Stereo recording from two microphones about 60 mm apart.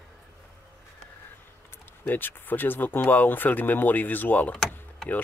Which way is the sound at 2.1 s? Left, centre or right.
Left.